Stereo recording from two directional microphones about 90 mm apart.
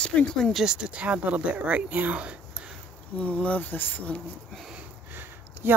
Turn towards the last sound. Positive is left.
turn(degrees=-25)  # may be behind; listen again after turning